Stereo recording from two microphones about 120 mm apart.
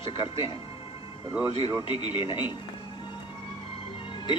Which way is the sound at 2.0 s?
40° left (ahead or behind).